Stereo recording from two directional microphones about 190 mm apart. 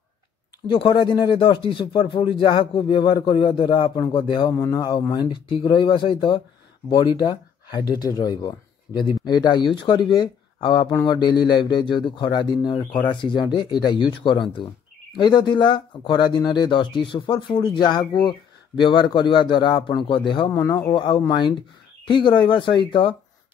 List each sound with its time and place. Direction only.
0.7 s speech: 25° left (ahead or behind)